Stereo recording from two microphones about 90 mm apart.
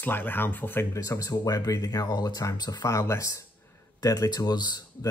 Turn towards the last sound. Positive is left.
turn(degrees=50)  # may be behind; listen again after turning